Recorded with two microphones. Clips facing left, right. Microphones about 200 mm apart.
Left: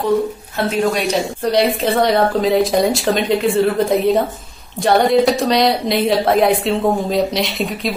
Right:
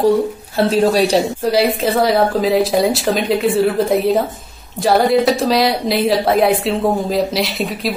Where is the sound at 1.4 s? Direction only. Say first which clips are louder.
Right 1 dB; 5° right (ahead or behind).